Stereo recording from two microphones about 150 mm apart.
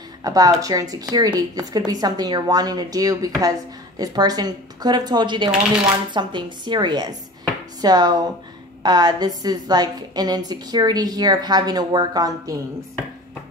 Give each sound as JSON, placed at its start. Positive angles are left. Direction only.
{"t": 0.2, "sound": "a woman's voice", "side_deg": -25}